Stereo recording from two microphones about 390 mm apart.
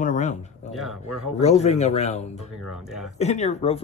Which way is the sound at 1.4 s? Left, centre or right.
Centre.